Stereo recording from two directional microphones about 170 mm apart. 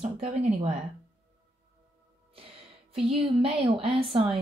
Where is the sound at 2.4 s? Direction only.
35° right (ahead or behind).